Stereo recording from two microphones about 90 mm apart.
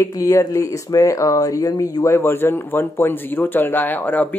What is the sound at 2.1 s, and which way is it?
Speech, 25° left (ahead or behind).